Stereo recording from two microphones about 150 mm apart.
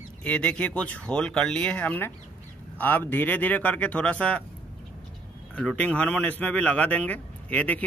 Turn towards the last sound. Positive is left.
turn(degrees=10)  # may be behind; listen again after turning